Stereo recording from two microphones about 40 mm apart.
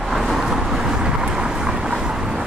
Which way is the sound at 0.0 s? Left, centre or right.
Centre.